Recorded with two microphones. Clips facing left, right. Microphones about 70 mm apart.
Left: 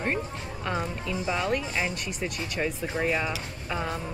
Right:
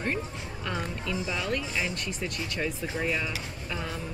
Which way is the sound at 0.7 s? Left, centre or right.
Left.